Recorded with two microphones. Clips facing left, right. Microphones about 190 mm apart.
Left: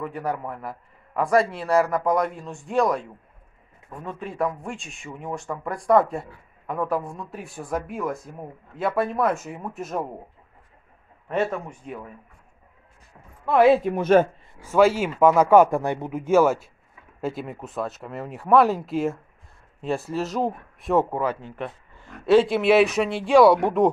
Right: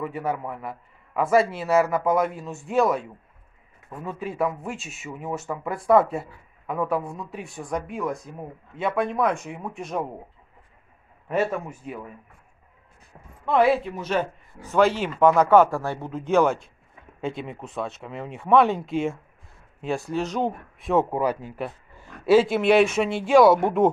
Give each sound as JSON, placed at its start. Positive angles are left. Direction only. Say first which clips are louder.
{"t": 0.0, "sound": "speech", "louder": "right 1 dB", "side_deg": 0}
{"t": 11.2, "sound": "speech", "louder": "even", "side_deg": -5}
{"t": 13.5, "sound": "speech", "louder": "left 1 dB", "side_deg": 5}
{"t": 13.8, "sound": "speech", "louder": "left 8 dB", "side_deg": 50}
{"t": 14.6, "sound": "speech", "louder": "left 2 dB", "side_deg": 10}
{"t": 21.1, "sound": "speech", "louder": "right 1 dB", "side_deg": -10}